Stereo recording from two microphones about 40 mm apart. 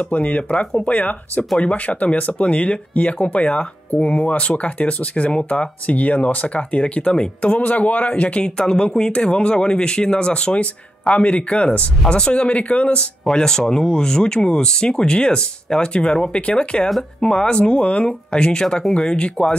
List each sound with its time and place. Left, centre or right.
0.0 s speech: left
8.5 s speech: centre
13.2 s speech: centre; by 16.6 s left
17.2 s speech: centre